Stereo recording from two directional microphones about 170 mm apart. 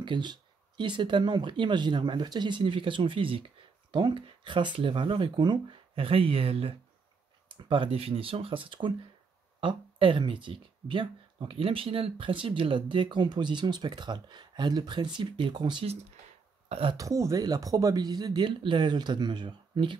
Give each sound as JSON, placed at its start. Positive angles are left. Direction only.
{"t": 0.0, "sound": "speech", "side_deg": -25}
{"t": 16.9, "sound": "speech", "side_deg": -20}